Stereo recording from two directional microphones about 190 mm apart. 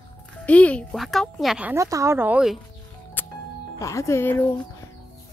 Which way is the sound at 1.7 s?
15° right (ahead or behind).